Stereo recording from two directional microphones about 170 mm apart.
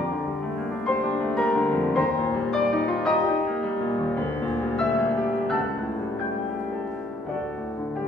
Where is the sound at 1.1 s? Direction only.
5° left (ahead or behind).